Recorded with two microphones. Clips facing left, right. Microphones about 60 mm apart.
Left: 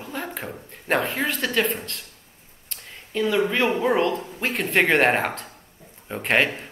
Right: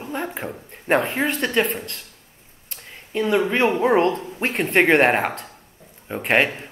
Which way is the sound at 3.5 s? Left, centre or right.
Right.